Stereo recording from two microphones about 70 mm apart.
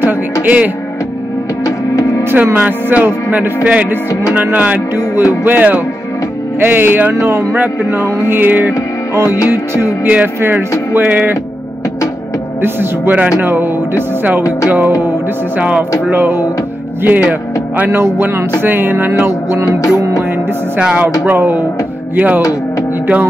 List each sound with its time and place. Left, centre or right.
0.0 s music: right
1.6 s music: left
2.2 s music: right
2.5 s music: centre
12.6 s music: right
17.0 s speech: right
18.6 s music: right
20.8 s music: centre
21.3 s music: right
22.4 s speech: left